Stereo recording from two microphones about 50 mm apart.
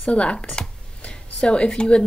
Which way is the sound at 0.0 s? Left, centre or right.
Left.